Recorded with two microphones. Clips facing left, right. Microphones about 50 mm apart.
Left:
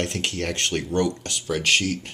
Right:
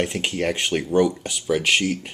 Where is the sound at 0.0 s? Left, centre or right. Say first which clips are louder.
Right 3 dB; centre.